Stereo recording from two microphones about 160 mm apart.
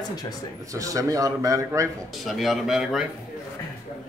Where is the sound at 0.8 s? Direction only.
20° right (ahead or behind).